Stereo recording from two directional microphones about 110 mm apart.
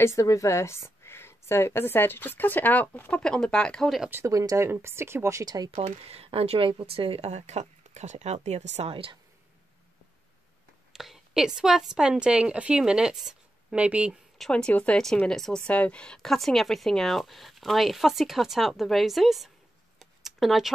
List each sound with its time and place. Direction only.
0.0 s a woman's voice: 30° left (ahead or behind); by 4.1 s centre (ahead or behind)
4.1 s speech: 25° right (ahead or behind)
5.4 s speech: 40° right (ahead or behind)
5.8 s speech: 65° right (ahead or behind); by 8.9 s 85° right
8.9 s speech: 55° right (ahead or behind)
10.9 s a sound: 5° right (ahead or behind)
11.9 s speech: 5° right (ahead or behind)
14.4 s speech: 10° left (ahead or behind)
20.0 s a sound: centre (ahead or behind)